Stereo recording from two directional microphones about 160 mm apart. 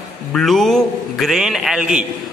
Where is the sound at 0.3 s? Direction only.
5° left (ahead or behind).